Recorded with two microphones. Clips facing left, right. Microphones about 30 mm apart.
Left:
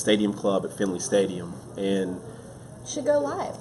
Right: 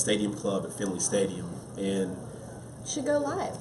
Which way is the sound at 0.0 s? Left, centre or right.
Centre.